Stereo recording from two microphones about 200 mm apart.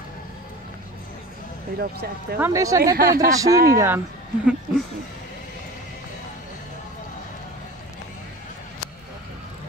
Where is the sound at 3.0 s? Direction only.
45° right (ahead or behind).